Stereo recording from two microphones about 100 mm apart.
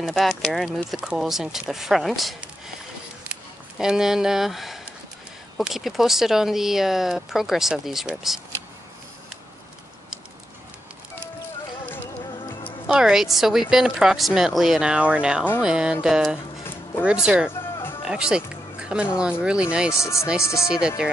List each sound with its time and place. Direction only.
0.1 s speech: centre (ahead or behind)
3.7 s speech: 5° right (ahead or behind)
12.8 s speech: 5° right (ahead or behind)
15.6 s music: 10° right (ahead or behind)
18.0 s speech: 10° right (ahead or behind)
19.1 s music: 10° right (ahead or behind)
19.9 s speech: 30° left (ahead or behind)
20.6 s music: 10° right (ahead or behind)